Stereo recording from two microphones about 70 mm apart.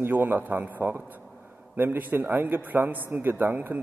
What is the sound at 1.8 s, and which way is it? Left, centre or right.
A man's voice, right.